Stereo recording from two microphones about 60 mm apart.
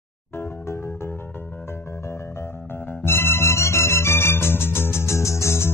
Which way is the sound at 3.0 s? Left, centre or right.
Left.